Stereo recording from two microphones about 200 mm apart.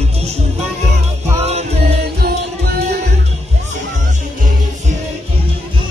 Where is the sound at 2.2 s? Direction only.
50° right (ahead or behind).